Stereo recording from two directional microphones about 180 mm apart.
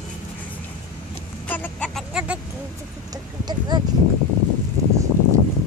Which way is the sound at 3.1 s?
25° right (ahead or behind).